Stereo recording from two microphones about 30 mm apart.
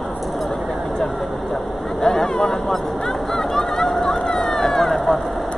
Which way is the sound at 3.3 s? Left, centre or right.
Centre.